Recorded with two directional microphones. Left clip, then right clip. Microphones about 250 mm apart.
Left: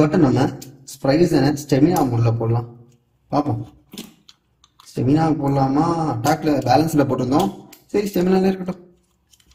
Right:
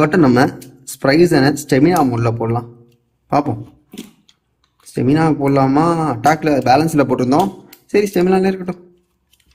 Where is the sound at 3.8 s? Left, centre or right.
Centre.